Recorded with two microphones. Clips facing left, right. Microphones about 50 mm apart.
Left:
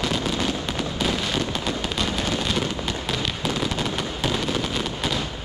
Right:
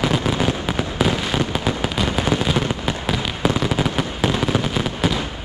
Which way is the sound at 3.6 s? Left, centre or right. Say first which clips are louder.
Right 5 dB; centre.